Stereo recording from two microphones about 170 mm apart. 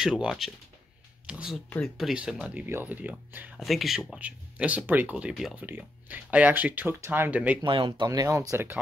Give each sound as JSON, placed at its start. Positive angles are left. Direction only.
{"t": 0.0, "sound": "speech", "side_deg": -5}
{"t": 7.6, "sound": "speech", "side_deg": -30}